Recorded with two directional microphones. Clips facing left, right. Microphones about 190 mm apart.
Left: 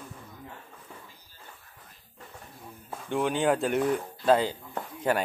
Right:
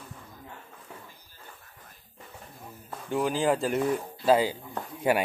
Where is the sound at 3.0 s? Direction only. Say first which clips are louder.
Even; centre (ahead or behind).